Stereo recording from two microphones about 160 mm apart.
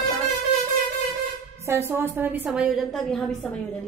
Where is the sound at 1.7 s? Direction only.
15° right (ahead or behind).